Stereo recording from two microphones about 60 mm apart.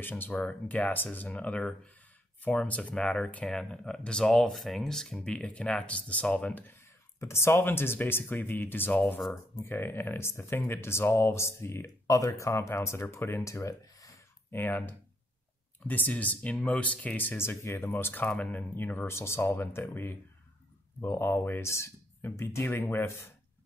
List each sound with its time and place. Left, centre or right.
0.2 s speech: left; by 5.3 s centre
5.3 s speech: centre
6.7 s speech: left
12.1 s speech: left
13.4 s speech: left
14.5 s speech: left
18.8 s speech: left
21.6 s speech: left